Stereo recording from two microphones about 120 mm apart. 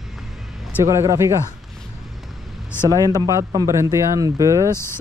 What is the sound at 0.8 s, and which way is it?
Speech, 25° right (ahead or behind).